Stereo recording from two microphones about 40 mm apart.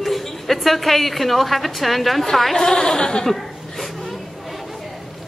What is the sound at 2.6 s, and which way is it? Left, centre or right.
Speech, centre.